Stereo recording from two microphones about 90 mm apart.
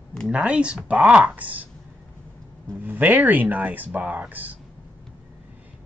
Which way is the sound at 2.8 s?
20° right (ahead or behind).